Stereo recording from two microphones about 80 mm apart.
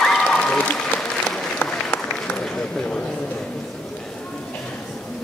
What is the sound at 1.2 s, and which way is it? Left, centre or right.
Applause, left.